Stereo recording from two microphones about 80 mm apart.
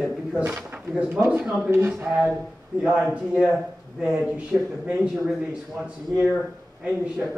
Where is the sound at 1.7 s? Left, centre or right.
Right; by 6.2 s centre.